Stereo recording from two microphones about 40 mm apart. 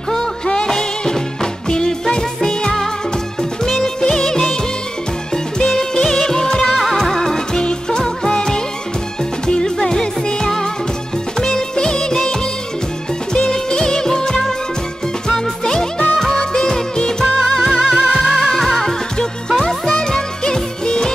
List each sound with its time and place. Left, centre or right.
0.7 s music: centre
3.8 s music: centre
6.6 s music: centre
6.9 s music: centre
15.6 s music: centre
17.4 s music: centre
18.5 s music: centre